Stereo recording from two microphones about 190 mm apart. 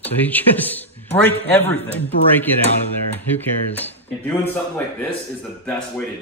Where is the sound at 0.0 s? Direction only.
10° left (ahead or behind).